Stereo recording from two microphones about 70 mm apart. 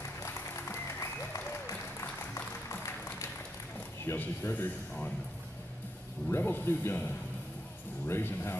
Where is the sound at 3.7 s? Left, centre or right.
Left.